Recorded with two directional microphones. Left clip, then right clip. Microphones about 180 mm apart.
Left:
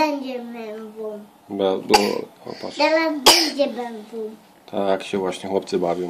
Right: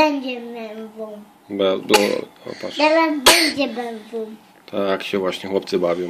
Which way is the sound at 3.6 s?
45° right (ahead or behind).